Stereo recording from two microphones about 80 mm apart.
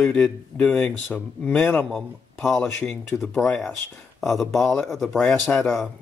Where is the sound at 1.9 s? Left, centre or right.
Centre.